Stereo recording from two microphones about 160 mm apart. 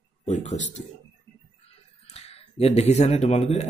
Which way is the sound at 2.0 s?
40° left (ahead or behind).